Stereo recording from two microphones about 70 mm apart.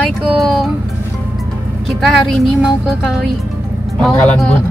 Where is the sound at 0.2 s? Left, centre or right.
Centre.